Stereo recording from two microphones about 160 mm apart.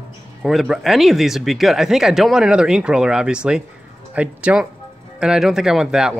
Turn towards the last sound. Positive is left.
turn(degrees=-5)  # may be behind; listen again after turning